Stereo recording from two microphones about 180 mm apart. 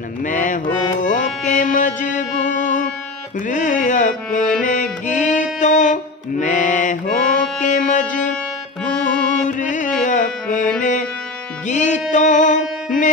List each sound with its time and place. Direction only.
0.2 s mantra: 45° left (ahead or behind)
1.0 s music: 45° left (ahead or behind)
9.4 s music: 45° left (ahead or behind)